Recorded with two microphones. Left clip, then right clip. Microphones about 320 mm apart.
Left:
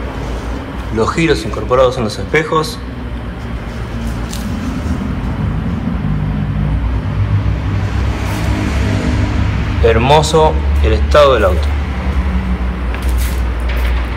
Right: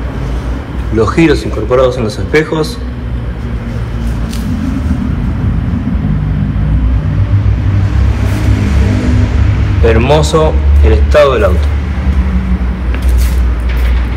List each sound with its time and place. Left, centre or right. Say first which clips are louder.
0.9 s a man's voice: right 4 dB; centre
9.8 s speech: even; centre